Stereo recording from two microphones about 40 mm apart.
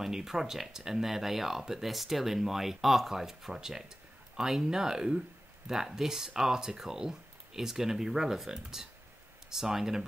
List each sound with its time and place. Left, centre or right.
0.0 s speech: centre